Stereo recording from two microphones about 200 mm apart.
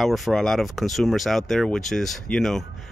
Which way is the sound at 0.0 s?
Centre (ahead or behind).